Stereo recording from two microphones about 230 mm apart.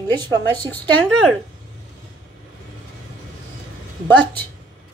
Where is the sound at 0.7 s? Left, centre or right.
Centre.